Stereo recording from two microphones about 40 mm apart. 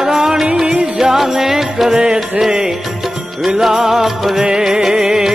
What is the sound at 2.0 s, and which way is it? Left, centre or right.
Music, centre.